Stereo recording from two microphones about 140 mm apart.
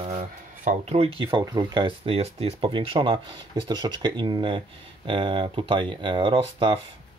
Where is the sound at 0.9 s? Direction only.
40° right (ahead or behind).